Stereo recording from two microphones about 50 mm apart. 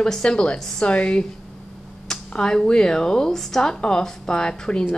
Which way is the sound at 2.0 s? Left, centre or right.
Centre.